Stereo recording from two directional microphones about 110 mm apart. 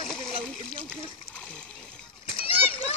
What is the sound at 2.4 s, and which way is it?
Splash, 60° left (ahead or behind).